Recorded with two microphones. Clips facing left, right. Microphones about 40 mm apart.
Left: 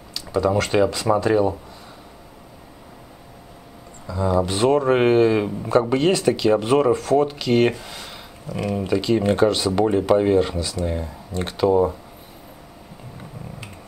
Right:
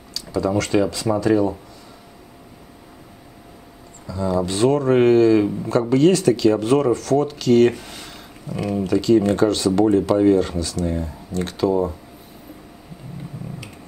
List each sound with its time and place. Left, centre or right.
0.1 s speech: left
4.1 s speech: left
7.8 s a sound: left
8.7 s speech: left